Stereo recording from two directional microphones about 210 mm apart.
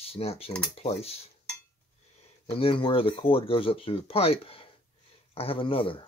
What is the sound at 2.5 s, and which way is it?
Speech, 25° left (ahead or behind).